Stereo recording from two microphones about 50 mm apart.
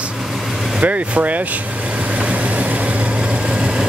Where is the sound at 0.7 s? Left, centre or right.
Right.